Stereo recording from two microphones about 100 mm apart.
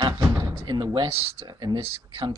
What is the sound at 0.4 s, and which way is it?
Door, 40° right (ahead or behind).